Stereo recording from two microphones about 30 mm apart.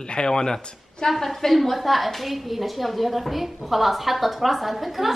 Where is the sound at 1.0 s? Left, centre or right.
Centre.